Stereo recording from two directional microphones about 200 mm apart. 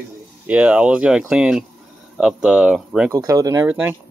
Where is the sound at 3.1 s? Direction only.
15° right (ahead or behind).